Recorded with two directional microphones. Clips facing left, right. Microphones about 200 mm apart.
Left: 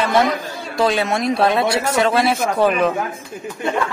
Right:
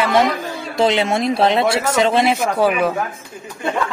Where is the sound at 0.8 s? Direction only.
25° right (ahead or behind); by 2.9 s 10° right (ahead or behind).